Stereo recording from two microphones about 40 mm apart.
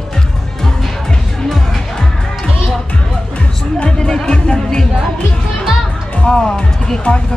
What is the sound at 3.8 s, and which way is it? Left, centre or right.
Music, centre.